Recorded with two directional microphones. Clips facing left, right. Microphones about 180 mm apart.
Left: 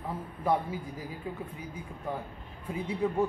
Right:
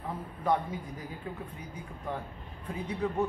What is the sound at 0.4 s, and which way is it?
Speech, 10° left (ahead or behind).